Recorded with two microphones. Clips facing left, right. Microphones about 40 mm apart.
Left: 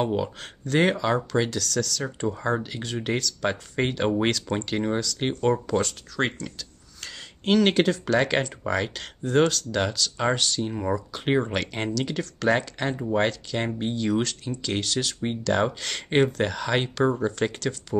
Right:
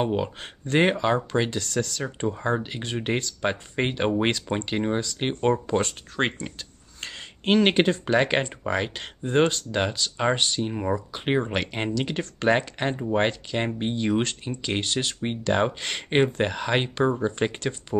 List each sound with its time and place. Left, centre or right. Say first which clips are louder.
0.0 s speech: even; right
11.2 s speech: left 1 dB; centre
17.4 s speech: even; right